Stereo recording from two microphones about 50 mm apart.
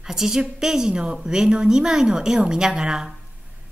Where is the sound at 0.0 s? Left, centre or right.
Centre.